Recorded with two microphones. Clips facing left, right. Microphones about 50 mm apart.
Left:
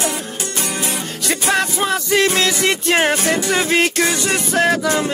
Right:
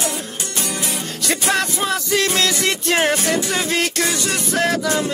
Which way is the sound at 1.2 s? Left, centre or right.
Centre.